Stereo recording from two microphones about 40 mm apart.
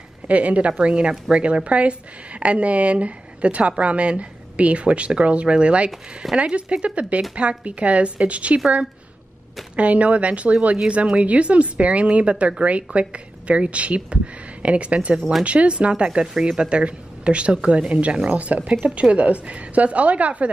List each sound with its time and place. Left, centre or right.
0.3 s a woman's voice: right
9.8 s a woman's voice: right
18.7 s a woman's voice: right